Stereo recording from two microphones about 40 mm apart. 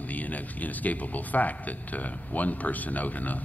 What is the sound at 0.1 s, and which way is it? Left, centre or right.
A man's voice, left.